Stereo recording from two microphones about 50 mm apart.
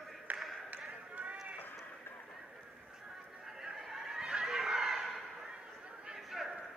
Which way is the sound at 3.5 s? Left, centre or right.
Centre.